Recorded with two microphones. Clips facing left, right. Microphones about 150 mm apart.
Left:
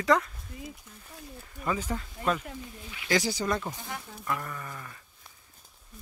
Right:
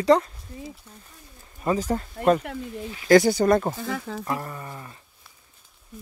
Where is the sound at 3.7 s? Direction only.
90° right.